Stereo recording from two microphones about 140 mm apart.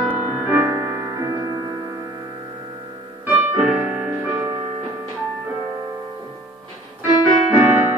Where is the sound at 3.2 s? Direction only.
15° right (ahead or behind).